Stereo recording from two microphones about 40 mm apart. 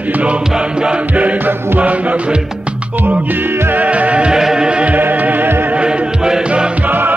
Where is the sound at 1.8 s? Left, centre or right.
Right.